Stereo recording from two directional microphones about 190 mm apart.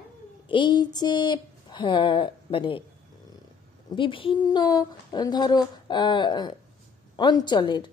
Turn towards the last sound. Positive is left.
turn(degrees=25)  # may be behind; listen again after turning